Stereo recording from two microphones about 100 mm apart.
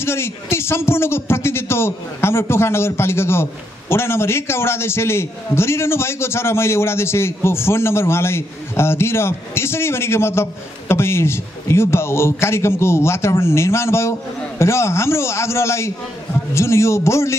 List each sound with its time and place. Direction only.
0.0 s a man's voice: 25° left (ahead or behind)